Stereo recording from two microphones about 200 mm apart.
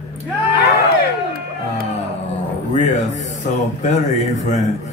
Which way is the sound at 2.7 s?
35° left (ahead or behind).